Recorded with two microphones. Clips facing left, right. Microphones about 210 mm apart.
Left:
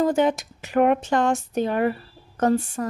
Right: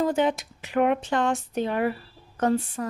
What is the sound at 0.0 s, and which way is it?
A woman's voice, 45° left (ahead or behind).